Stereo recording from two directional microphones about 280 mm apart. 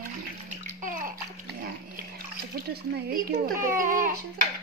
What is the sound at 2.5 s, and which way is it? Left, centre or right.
Speech, right.